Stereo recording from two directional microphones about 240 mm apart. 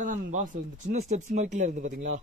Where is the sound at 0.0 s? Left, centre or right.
Right.